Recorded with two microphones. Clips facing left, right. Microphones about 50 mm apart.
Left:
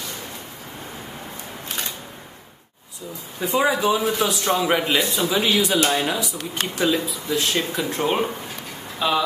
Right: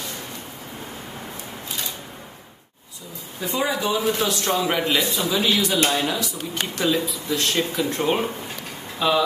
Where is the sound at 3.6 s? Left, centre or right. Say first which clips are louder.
Left 3 dB; centre.